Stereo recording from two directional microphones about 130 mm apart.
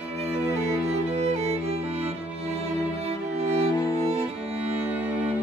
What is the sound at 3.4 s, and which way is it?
Music, 50° right (ahead or behind).